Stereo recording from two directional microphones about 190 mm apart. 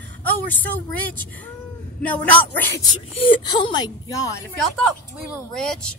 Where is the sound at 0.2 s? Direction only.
10° left (ahead or behind).